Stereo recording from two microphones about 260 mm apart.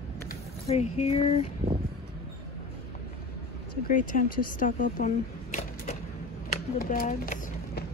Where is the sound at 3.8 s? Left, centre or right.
Left.